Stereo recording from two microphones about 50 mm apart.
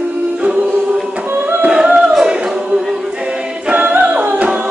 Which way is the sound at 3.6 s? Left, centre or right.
Right.